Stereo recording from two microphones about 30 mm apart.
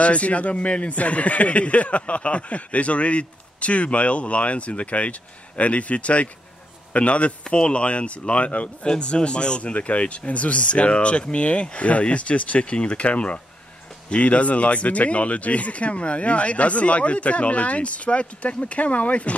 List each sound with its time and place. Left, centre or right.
0.0 s speech: left
7.4 s speech: left
8.8 s speech: left
9.6 s speech: left